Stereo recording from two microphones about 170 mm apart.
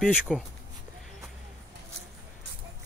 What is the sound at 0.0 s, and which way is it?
Speech, 5° right (ahead or behind).